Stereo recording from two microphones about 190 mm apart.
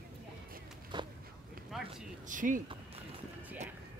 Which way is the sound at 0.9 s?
25° right (ahead or behind).